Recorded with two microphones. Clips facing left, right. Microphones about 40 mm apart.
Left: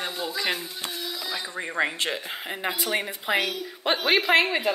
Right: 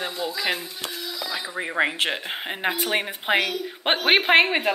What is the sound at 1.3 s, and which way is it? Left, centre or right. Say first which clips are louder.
Speech: right 4 dB; centre.